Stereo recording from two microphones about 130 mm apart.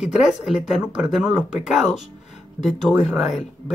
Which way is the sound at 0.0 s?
5° right (ahead or behind).